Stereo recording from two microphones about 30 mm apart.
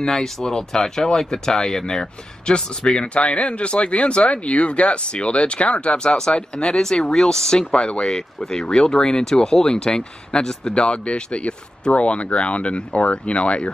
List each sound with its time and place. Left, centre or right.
0.0 s speech: centre
2.4 s speech: left
6.0 s speech: left
7.7 s speech: left
12.0 s speech: left